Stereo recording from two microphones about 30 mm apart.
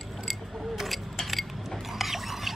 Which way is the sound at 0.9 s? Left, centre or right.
Centre.